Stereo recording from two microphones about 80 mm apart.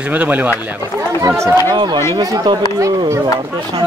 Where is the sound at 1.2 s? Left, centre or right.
Right.